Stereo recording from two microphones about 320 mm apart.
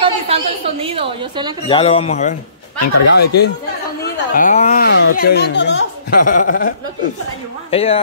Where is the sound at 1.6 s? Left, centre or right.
Centre.